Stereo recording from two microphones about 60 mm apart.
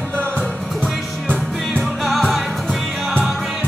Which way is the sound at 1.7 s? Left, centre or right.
Centre.